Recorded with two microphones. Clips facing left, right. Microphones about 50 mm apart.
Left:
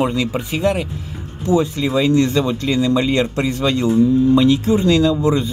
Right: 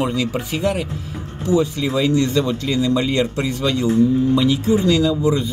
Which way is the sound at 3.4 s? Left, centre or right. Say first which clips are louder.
Left 2 dB; left.